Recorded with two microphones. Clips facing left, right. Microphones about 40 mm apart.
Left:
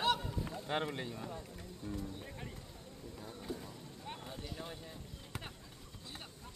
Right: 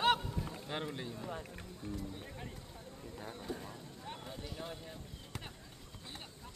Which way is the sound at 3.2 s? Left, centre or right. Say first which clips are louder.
Right 4 dB; right.